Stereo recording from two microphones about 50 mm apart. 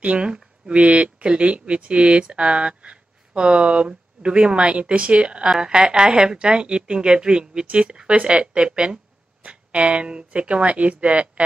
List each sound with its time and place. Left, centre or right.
0.0 s speech: centre